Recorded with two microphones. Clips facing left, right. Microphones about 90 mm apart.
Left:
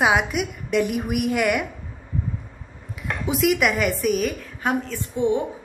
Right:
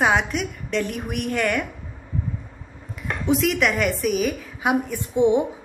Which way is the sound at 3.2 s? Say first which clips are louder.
Even; 5° left (ahead or behind).